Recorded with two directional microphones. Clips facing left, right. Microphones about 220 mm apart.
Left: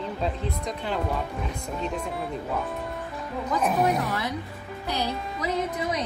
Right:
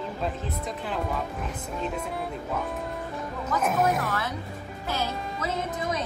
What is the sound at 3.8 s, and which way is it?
Speech, 20° left (ahead or behind).